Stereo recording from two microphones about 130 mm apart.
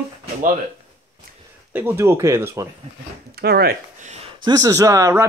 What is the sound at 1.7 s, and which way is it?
Speech, 15° right (ahead or behind).